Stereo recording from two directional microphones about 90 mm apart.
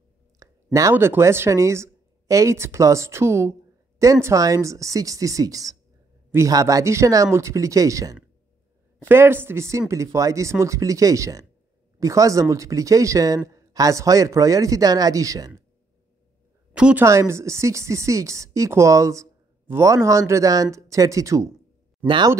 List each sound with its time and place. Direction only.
0.4 s a sound: 35° right (ahead or behind)
0.9 s speech: 25° right (ahead or behind)
9.0 s speech: 25° right (ahead or behind)
16.7 s speech: 10° right (ahead or behind)
17.0 s speech: 35° right (ahead or behind)
22.0 s speech: 65° right (ahead or behind)